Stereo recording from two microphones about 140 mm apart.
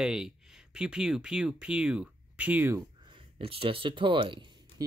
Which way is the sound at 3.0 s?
35° right (ahead or behind).